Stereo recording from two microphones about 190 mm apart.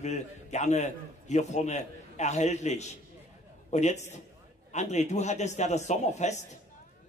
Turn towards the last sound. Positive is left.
turn(degrees=35)  # may be behind; listen again after turning